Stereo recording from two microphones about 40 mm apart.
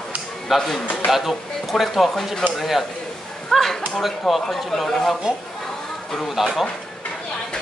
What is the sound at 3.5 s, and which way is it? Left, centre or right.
Speech, centre.